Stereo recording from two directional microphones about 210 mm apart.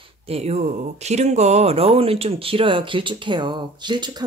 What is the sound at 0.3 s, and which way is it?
Speech, 30° right (ahead or behind).